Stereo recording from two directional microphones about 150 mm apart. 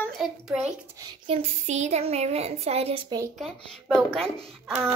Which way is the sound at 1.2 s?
40° right (ahead or behind).